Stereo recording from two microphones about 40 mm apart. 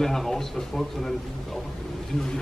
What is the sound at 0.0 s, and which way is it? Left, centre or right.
A man's voice, centre.